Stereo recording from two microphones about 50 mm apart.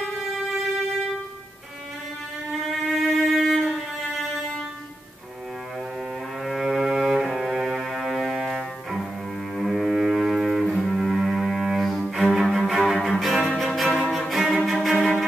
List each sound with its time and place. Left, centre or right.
2.7 s violin: centre
6.4 s cello: centre
7.8 s music: centre
9.6 s double bass: centre
12.1 s cello: centre
13.5 s music: centre
13.8 s music: centre
14.1 s cello: centre